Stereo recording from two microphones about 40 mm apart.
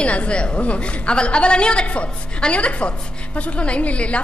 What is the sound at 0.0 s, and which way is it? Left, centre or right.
A woman's voice, left.